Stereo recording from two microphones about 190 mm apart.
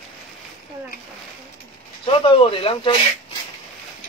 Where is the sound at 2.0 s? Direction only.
30° left (ahead or behind).